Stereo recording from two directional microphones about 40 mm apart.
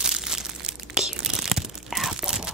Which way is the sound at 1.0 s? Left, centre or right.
Centre.